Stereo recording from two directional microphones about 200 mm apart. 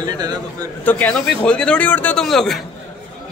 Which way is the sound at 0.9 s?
10° left (ahead or behind).